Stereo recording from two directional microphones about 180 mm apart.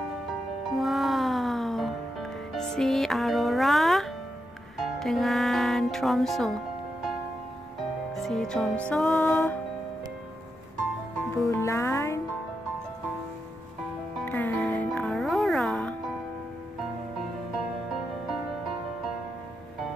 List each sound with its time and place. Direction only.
0.7 s music: centre (ahead or behind)
8.1 s music: centre (ahead or behind)
11.4 s music: 15° left (ahead or behind)
14.1 s music: 10° left (ahead or behind)